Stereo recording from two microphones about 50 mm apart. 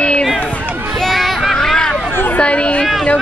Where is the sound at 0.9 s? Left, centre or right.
Centre.